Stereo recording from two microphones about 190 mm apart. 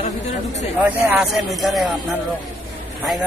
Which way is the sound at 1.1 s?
Centre (ahead or behind).